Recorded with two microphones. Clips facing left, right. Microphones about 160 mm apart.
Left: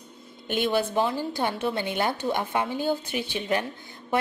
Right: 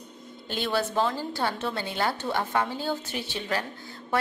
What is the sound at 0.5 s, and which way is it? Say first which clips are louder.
A woman's voice: left 3 dB; 15° left (ahead or behind).